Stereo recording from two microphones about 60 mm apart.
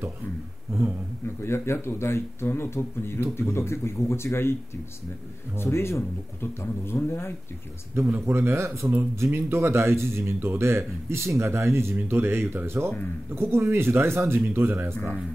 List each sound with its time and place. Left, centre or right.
1.4 s speech: left
5.6 s speech: left
7.9 s speech: right